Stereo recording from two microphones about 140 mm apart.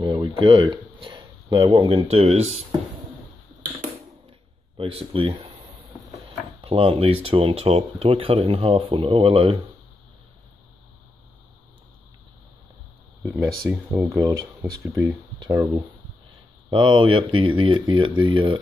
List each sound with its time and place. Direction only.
0.0 s speech: 35° right (ahead or behind)
2.0 s speech: 50° right (ahead or behind)
4.7 s speech: 40° right (ahead or behind)
6.6 s speech: 40° right (ahead or behind)
13.2 s speech: 20° right (ahead or behind); by 18.6 s 35° right (ahead or behind)